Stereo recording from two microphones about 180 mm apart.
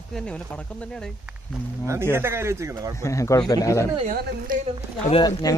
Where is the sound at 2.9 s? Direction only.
15° left (ahead or behind).